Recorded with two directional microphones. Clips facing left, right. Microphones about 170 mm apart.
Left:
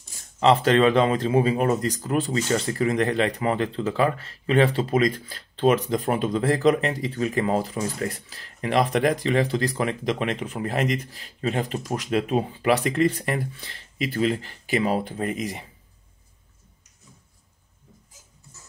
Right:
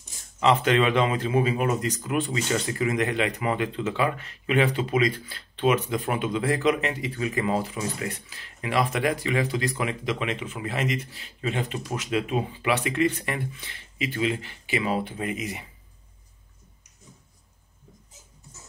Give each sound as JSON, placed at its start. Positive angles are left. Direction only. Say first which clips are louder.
{"t": 0.4, "sound": "speech", "louder": "left 3 dB", "side_deg": 35}